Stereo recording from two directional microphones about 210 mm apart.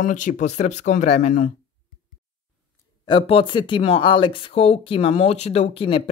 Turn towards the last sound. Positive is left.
turn(degrees=25)  # may be behind; listen again after turning